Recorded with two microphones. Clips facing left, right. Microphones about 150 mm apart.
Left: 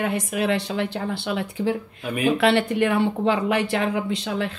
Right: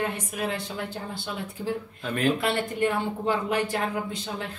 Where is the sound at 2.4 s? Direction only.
75° left (ahead or behind).